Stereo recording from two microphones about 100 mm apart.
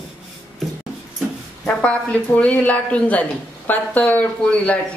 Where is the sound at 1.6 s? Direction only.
15° left (ahead or behind).